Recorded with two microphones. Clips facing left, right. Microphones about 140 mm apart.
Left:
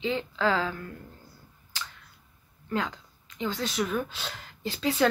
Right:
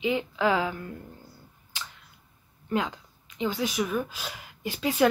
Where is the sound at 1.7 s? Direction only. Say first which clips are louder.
Left 1 dB; 15° right (ahead or behind).